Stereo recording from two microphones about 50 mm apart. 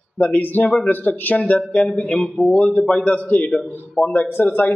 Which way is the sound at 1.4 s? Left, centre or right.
Left.